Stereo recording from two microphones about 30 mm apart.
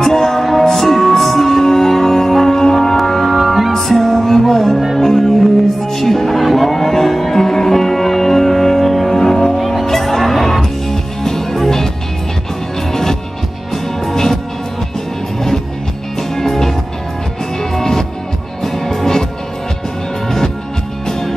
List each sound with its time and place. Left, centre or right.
0.0 s music: centre
3.7 s music: centre
9.6 s music: centre
12.9 s music: centre
16.2 s music: centre
20.2 s music: centre